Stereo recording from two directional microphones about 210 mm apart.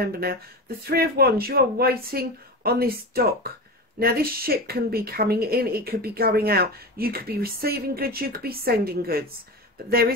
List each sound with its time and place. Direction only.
0.0 s speech: 50° right (ahead or behind)